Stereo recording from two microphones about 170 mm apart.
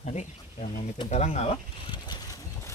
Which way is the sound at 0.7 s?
30° left (ahead or behind).